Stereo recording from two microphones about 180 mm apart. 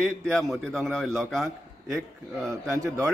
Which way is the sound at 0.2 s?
Centre (ahead or behind).